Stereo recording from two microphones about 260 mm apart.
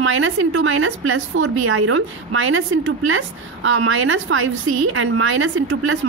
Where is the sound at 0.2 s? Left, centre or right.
Right.